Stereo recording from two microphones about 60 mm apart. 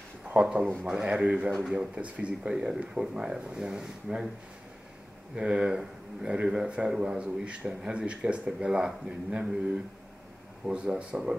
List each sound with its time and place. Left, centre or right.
0.4 s a man's voice: centre
5.3 s a man's voice: centre
10.6 s a man's voice: centre